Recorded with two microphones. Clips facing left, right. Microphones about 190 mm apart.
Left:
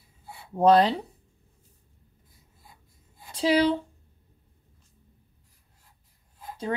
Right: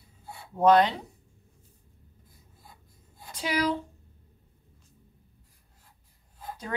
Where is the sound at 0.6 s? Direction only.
30° left (ahead or behind).